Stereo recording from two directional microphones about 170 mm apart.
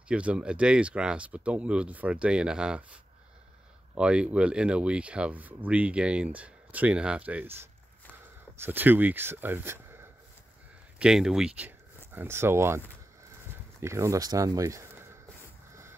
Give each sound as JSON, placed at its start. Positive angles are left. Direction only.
{"t": 0.1, "sound": "speech", "side_deg": -5}
{"t": 3.9, "sound": "speech", "side_deg": -5}
{"t": 8.5, "sound": "speech", "side_deg": -10}